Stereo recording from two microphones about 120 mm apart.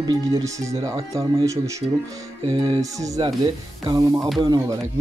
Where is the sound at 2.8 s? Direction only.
30° right (ahead or behind).